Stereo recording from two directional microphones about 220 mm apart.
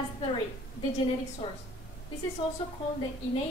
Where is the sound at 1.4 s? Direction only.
25° left (ahead or behind).